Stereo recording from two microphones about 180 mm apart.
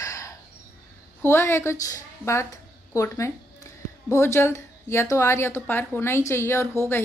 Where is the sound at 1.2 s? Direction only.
15° left (ahead or behind).